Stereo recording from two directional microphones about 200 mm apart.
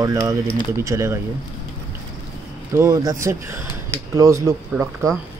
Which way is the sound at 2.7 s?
15° right (ahead or behind).